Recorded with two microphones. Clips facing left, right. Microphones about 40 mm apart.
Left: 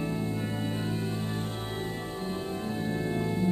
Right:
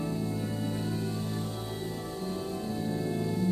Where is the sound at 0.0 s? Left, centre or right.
Left.